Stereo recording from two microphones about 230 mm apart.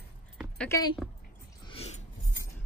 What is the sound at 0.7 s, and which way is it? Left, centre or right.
Speech, centre.